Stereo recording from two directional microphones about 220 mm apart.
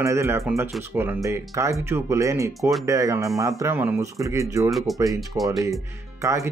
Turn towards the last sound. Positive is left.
turn(degrees=-15)  # may be behind; listen again after turning